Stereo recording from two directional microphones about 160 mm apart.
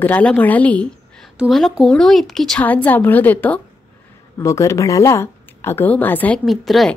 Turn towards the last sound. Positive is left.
turn(degrees=0)  # may be behind; listen again after turning